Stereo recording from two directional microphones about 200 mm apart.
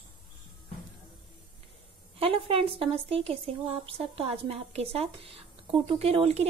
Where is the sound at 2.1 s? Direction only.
25° right (ahead or behind).